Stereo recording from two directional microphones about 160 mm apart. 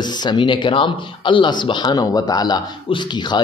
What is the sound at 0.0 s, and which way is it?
A man's voice, 25° left (ahead or behind).